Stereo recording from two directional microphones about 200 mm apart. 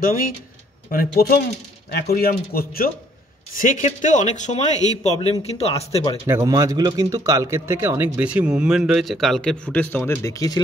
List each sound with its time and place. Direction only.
0.0 s speech: 45° left (ahead or behind)
6.2 s speech: 15° right (ahead or behind); by 10.6 s 15° left (ahead or behind)